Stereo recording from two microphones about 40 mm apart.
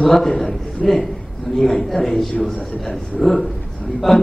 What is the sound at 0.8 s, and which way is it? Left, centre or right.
A man's voice, centre.